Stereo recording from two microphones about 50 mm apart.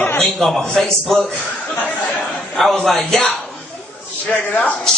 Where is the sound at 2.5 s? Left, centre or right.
Centre.